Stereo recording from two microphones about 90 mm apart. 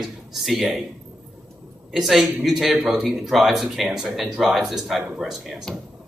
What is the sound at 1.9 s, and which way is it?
Speech, centre (ahead or behind).